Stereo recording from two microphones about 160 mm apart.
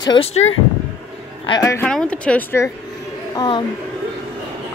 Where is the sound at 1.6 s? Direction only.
20° left (ahead or behind).